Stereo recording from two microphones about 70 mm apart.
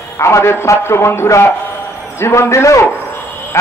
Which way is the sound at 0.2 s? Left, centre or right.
Left.